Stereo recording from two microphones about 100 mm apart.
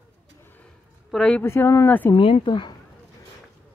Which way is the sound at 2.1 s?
60° left (ahead or behind).